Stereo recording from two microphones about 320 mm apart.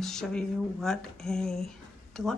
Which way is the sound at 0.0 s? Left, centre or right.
Centre.